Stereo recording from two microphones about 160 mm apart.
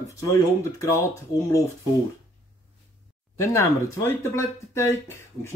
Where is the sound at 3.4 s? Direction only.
15° left (ahead or behind).